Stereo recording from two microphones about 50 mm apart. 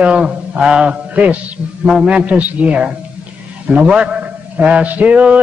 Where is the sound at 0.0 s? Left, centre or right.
Centre.